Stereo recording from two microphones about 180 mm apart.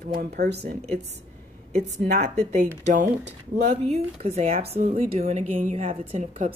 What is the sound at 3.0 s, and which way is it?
Speech, 70° right (ahead or behind).